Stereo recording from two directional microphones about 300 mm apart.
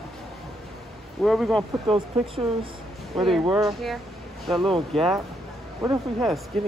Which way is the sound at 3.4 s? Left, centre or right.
Centre.